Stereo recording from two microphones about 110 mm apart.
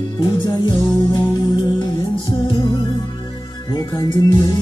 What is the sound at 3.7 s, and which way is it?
Music, 30° left (ahead or behind).